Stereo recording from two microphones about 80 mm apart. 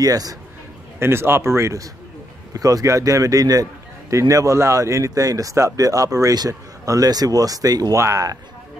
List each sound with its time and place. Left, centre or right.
0.0 s speech: right
0.9 s a man's voice: right
2.5 s speech: right